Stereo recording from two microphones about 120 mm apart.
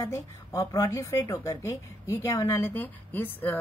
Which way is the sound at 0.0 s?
25° left (ahead or behind).